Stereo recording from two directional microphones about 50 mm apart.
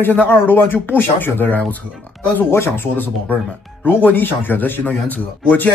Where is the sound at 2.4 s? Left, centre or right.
Left.